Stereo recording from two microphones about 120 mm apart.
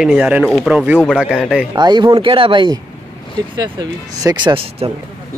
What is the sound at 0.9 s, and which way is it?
Speech, 5° left (ahead or behind).